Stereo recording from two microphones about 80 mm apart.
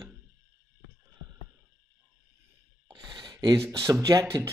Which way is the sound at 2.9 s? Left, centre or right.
Right.